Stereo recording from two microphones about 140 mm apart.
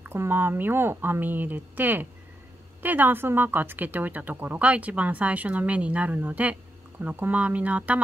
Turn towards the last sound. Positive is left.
turn(degrees=-10)  # may be behind; listen again after turning